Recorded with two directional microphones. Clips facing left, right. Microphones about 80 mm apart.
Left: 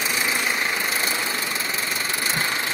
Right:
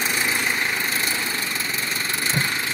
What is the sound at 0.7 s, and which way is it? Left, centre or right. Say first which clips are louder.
Engine: even; centre.